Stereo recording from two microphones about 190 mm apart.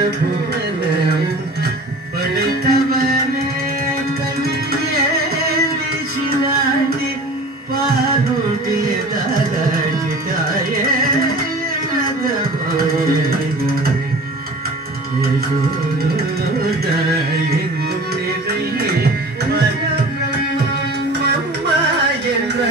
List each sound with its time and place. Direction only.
2.3 s music: 50° right (ahead or behind)